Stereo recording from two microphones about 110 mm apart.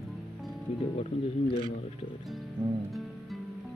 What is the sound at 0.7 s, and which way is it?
Speech, 70° left (ahead or behind).